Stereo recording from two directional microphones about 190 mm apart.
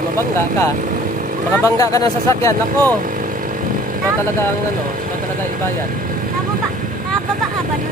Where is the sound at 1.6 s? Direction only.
20° left (ahead or behind).